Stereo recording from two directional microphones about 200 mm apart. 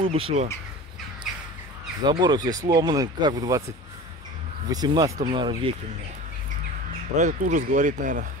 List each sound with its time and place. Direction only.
0.0 s speech: 30° right (ahead or behind)
2.0 s speech: 20° right (ahead or behind)
7.2 s speech: 40° right (ahead or behind)